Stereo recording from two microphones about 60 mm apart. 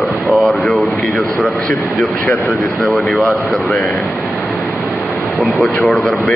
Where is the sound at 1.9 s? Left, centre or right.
Left.